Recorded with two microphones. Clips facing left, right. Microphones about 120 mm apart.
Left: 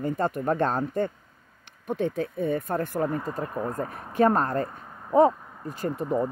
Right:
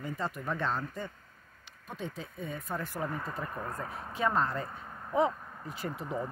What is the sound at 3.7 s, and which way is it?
Speech, 50° left (ahead or behind).